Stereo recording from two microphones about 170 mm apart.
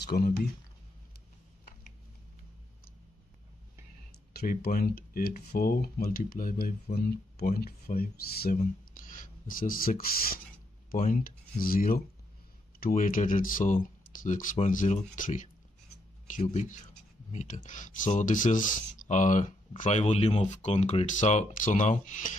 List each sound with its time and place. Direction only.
0.0 s speech: 70° left (ahead or behind)
4.3 s speech: 65° left (ahead or behind); by 22.3 s 45° left (ahead or behind)